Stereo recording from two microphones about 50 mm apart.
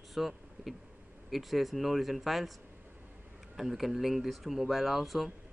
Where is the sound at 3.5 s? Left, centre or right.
Centre.